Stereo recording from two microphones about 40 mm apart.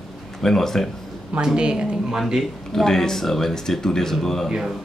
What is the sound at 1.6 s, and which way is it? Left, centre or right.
Speech, right.